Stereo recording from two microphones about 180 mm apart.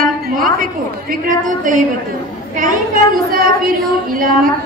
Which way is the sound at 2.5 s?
50° right (ahead or behind).